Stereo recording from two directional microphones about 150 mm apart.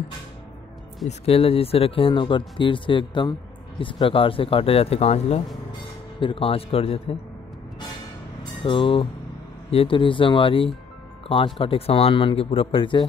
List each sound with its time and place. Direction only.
1.0 s speech: 40° left (ahead or behind)
8.6 s speech: 35° left (ahead or behind)